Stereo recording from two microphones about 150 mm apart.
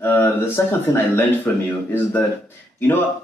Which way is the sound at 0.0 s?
15° left (ahead or behind).